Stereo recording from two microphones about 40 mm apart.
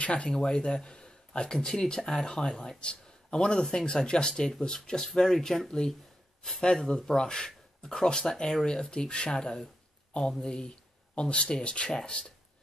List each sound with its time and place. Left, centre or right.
0.0 s speech: left
0.3 s speech: centre
2.2 s speech: centre